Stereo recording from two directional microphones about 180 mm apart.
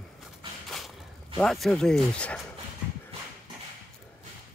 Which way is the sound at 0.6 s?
Centre (ahead or behind).